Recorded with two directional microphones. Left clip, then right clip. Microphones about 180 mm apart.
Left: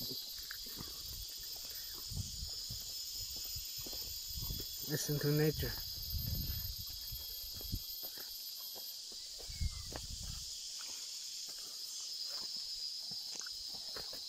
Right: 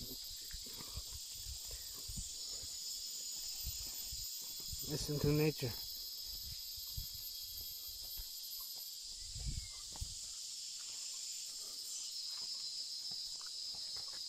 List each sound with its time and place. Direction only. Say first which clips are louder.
4.8 s cricket: left 1 dB; 5° right (ahead or behind)